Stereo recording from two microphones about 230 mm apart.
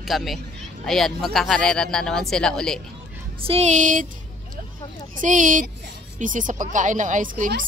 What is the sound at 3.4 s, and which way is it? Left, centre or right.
Speech, right.